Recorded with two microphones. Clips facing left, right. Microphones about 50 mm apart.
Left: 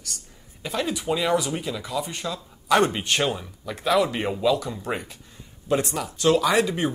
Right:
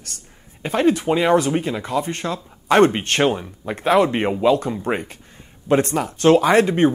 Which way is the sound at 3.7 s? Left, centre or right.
Right.